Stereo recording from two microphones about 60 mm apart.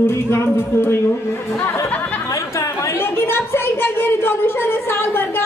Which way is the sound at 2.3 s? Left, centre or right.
Left.